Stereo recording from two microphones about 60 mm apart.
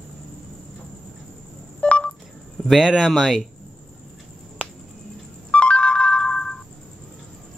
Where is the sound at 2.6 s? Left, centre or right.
Centre.